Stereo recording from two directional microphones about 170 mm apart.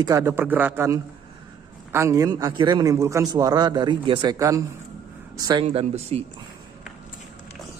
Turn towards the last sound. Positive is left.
turn(degrees=-35)  # may be behind; listen again after turning